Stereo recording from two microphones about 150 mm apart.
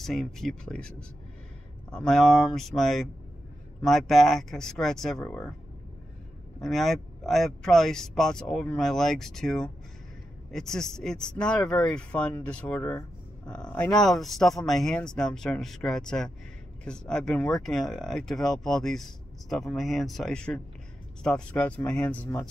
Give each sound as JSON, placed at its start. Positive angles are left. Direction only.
{"t": 0.0, "sound": "speech", "side_deg": 0}
{"t": 6.6, "sound": "speech", "side_deg": 0}